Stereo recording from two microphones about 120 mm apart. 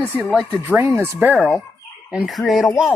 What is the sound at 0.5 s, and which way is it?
Speech, 20° right (ahead or behind).